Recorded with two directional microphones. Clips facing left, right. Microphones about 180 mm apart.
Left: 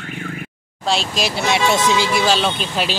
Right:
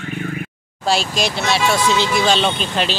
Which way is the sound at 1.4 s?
20° left (ahead or behind).